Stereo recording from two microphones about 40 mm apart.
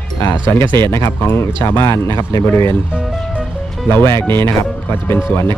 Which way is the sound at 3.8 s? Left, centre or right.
Left.